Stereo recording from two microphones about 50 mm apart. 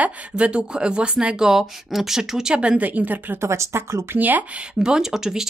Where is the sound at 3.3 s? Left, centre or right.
Right.